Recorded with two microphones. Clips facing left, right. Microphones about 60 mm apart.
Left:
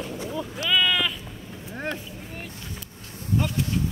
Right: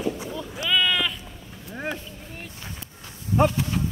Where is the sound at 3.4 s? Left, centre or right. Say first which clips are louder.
Right 10 dB; right.